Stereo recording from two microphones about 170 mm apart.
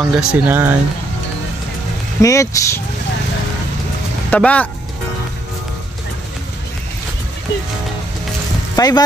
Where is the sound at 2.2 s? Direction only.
20° left (ahead or behind).